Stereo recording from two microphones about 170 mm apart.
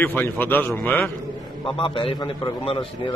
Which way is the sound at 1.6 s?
30° left (ahead or behind).